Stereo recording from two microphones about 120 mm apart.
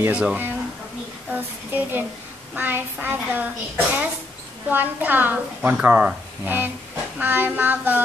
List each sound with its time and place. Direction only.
0.1 s a woman's voice: 10° right (ahead or behind)